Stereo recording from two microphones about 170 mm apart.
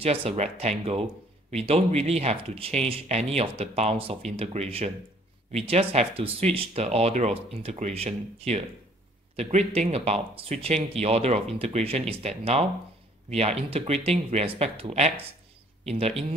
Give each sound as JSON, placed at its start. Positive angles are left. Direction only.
{"t": 0.0, "sound": "speech", "side_deg": -35}